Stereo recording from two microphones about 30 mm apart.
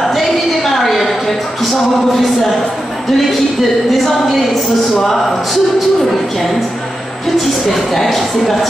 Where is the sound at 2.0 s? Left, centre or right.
Centre.